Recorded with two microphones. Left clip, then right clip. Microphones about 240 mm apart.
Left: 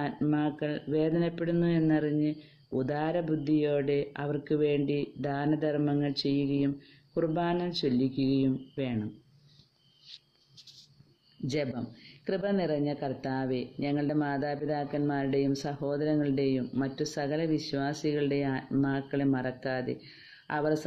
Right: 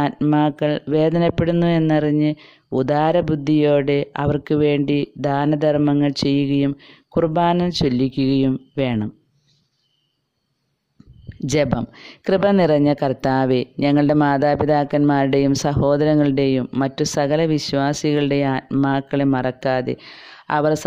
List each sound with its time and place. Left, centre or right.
0.0 s speech: right
11.4 s speech: right